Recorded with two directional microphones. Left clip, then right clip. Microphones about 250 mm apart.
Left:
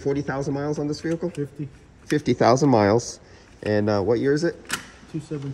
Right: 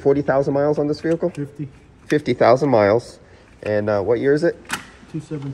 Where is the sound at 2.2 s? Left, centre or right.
Centre.